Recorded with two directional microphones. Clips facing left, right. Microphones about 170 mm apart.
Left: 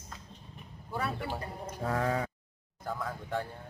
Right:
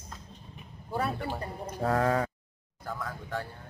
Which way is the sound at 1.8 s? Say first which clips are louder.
Right 5 dB; 75° right (ahead or behind).